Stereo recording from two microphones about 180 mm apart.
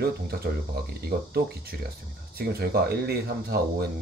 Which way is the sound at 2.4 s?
60° right (ahead or behind).